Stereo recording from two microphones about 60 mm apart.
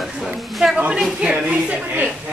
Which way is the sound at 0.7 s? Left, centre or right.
Right.